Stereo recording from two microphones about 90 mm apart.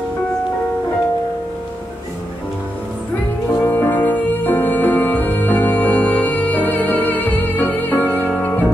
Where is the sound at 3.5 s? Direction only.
25° left (ahead or behind).